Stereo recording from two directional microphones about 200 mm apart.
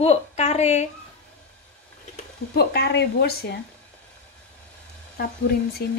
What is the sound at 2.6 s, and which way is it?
A woman's voice, 55° left (ahead or behind).